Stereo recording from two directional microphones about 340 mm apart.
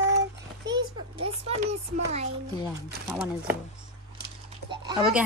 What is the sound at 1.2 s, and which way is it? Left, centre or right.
Speech, centre.